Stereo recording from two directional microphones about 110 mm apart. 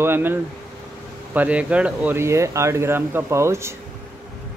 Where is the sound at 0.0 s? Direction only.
20° right (ahead or behind).